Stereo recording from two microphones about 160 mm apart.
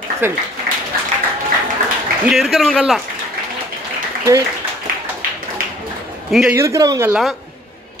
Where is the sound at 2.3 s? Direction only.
Centre (ahead or behind).